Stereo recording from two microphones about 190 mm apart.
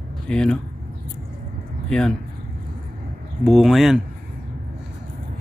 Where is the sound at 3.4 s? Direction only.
Centre (ahead or behind).